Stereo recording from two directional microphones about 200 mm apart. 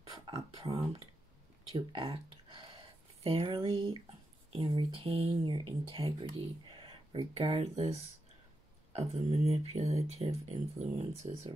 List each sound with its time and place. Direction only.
0.1 s a sound: 15° right (ahead or behind)
1.9 s speech: 25° right (ahead or behind)
8.9 s speech: 30° right (ahead or behind)